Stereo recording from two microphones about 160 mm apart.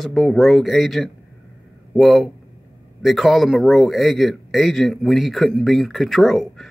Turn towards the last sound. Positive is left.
turn(degrees=0)  # may be behind; listen again after turning